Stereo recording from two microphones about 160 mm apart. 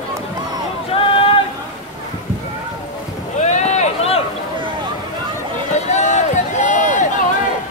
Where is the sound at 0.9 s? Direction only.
35° left (ahead or behind).